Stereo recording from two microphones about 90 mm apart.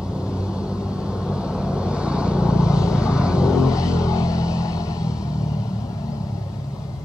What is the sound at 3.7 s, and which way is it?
Vehicle, 35° left (ahead or behind).